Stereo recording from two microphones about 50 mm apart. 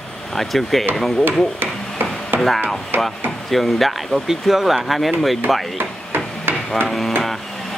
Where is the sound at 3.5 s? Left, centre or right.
Centre.